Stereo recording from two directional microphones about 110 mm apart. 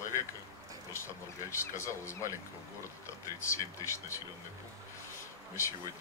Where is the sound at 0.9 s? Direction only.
25° left (ahead or behind).